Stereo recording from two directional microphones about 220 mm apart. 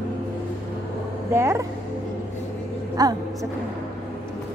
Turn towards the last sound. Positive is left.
turn(degrees=-15)  # may be behind; listen again after turning